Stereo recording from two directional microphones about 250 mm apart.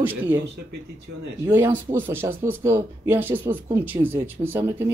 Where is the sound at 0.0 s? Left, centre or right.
Centre.